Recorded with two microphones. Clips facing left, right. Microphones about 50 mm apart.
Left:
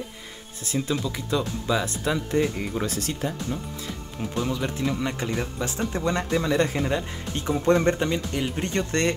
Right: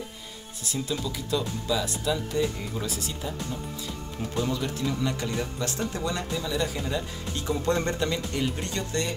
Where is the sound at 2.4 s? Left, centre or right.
Left.